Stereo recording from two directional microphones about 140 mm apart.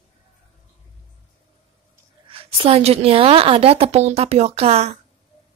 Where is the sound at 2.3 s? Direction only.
40° right (ahead or behind).